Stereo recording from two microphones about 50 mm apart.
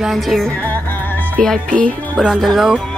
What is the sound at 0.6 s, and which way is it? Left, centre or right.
Yodeling, left.